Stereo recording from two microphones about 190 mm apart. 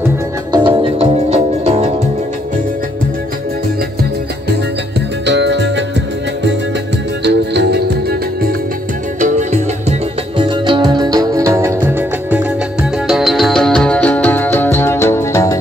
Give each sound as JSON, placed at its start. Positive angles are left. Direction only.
{"t": 0.5, "sound": "music", "side_deg": -25}
{"t": 5.2, "sound": "music", "side_deg": -65}
{"t": 7.2, "sound": "music", "side_deg": -60}
{"t": 9.2, "sound": "music", "side_deg": -40}